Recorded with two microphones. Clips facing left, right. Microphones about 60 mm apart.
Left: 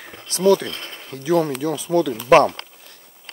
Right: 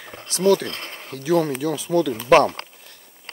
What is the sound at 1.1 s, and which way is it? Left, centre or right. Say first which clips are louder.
Speech: left 1 dB; left.